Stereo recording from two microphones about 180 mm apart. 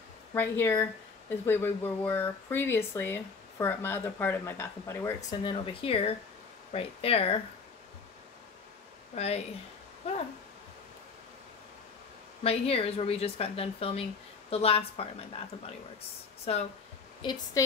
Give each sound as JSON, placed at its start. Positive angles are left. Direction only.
{"t": 0.3, "sound": "a woman's voice", "side_deg": 10}
{"t": 9.1, "sound": "speech", "side_deg": 35}
{"t": 12.4, "sound": "a woman's voice", "side_deg": 35}
{"t": 16.5, "sound": "a woman's voice", "side_deg": 35}